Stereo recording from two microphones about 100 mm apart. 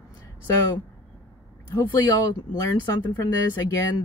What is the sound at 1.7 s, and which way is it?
Speech, 30° left (ahead or behind).